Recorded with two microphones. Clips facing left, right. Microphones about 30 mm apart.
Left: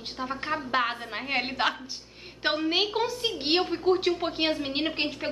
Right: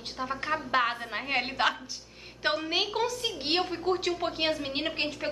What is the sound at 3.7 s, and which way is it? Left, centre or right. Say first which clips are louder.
A woman's voice: left 4 dB; centre.